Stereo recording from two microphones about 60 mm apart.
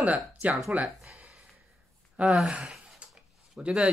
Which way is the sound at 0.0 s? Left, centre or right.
Right.